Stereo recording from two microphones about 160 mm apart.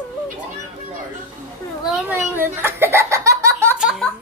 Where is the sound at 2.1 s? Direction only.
15° right (ahead or behind).